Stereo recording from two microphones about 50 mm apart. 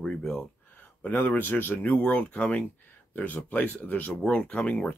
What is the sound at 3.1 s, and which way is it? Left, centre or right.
Speech, left.